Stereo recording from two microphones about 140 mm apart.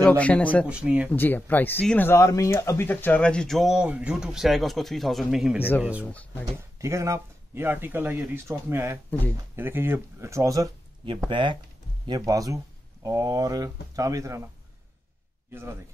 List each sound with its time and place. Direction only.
0.0 s speech: 10° left (ahead or behind)
0.7 s speech: 10° right (ahead or behind)
1.1 s speech: 15° left (ahead or behind); by 6.0 s 10° right (ahead or behind)
6.8 s speech: 20° right (ahead or behind)
11.2 s speech: 35° right (ahead or behind)
12.1 s speech: 25° right (ahead or behind)